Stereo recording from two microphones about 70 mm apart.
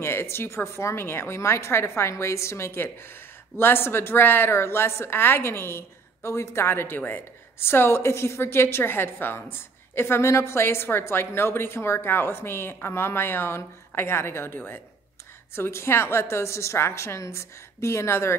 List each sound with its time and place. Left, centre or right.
0.0 s a woman's voice: left